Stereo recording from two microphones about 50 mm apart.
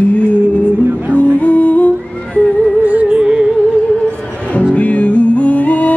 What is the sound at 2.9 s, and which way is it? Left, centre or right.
Music, right.